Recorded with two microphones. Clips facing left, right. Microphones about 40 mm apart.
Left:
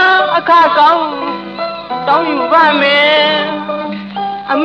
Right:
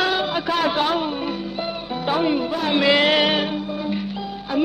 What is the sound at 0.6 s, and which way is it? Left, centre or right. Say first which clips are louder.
A woman's voice: left 12 dB; left.